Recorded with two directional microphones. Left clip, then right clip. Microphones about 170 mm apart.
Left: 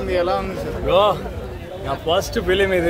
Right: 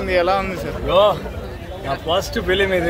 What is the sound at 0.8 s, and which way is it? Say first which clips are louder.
Speech: right 1 dB; 25° left (ahead or behind).